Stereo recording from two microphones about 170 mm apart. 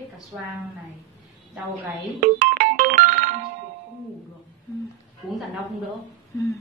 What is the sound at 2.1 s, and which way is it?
Music, 50° right (ahead or behind).